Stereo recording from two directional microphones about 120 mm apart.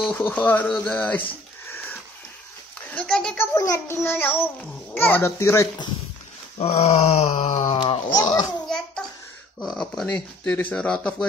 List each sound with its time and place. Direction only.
0.2 s speech: 15° left (ahead or behind)
2.9 s a sound: 5° left (ahead or behind)
3.3 s a child's voice: 30° left (ahead or behind)
6.6 s groan: 60° left (ahead or behind)
7.7 s speech: 50° left (ahead or behind)
8.1 s a child's voice: 35° left (ahead or behind)
8.6 s a sound: 5° left (ahead or behind)
9.6 s speech: centre (ahead or behind)